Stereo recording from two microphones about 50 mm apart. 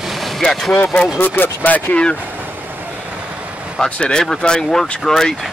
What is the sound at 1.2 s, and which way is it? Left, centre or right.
Speech, left.